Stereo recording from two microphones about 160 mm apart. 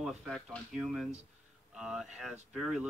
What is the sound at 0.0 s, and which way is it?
A man's voice, centre (ahead or behind).